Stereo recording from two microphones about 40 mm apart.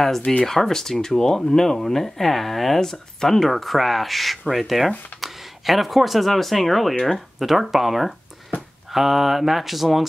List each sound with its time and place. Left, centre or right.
0.2 s speech: left
0.5 s speech: centre